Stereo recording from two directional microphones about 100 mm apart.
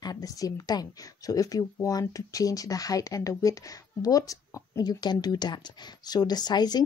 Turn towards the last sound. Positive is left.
turn(degrees=45)  # may be behind; listen again after turning